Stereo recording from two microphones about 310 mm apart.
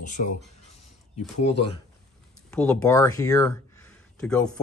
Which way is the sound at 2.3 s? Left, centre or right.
Centre.